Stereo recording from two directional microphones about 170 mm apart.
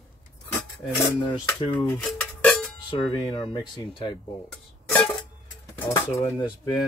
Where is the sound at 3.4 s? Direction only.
30° left (ahead or behind).